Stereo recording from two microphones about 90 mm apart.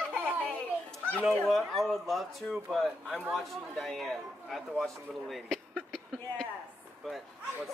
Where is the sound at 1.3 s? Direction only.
Centre (ahead or behind).